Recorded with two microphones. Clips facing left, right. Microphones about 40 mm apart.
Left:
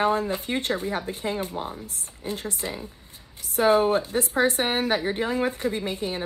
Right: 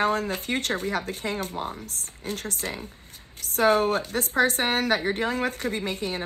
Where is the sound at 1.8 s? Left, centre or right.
Right.